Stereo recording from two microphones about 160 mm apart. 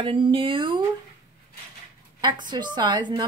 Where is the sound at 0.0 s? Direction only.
30° right (ahead or behind).